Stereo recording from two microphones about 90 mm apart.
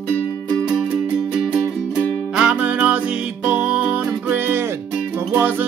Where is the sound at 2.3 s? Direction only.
15° right (ahead or behind).